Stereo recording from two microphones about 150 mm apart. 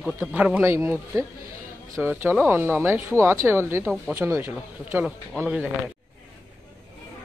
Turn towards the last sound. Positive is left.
turn(degrees=-5)  # may be behind; listen again after turning